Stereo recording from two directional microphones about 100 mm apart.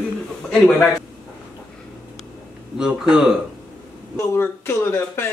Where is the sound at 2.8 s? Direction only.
5° right (ahead or behind).